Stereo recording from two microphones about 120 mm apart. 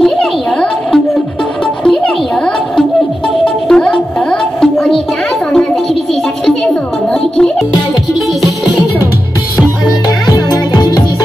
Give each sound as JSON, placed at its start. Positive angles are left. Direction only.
{"t": 0.0, "sound": "a sound", "side_deg": 5}
{"t": 3.4, "sound": "music", "side_deg": 5}
{"t": 10.2, "sound": "music", "side_deg": 35}